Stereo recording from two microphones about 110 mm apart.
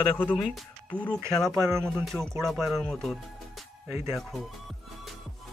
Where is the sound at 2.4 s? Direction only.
Centre (ahead or behind).